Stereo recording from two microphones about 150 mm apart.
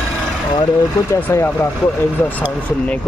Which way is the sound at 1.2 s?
15° left (ahead or behind).